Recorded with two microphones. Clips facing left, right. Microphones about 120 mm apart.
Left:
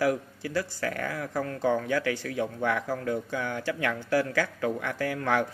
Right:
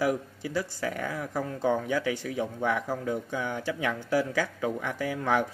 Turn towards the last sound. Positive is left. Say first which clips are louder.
# even
turn(degrees=-10)  # may be behind; listen again after turning